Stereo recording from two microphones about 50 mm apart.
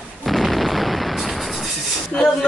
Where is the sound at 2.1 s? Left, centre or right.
Centre.